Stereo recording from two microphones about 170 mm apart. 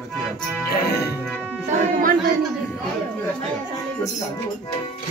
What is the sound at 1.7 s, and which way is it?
Music, 55° right (ahead or behind).